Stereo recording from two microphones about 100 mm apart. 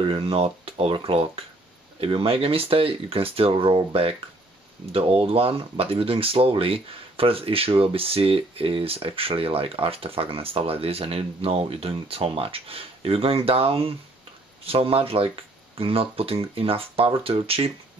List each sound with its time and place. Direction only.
0.0 s speech: 65° right (ahead or behind)
2.0 s speech: 65° right (ahead or behind)